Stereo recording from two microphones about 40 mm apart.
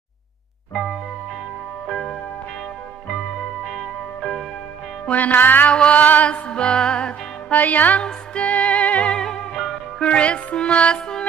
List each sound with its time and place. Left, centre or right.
3.3 s music: centre
5.1 s music: left
5.7 s music: left
7.5 s music: left
9.1 s music: centre
10.0 s music: left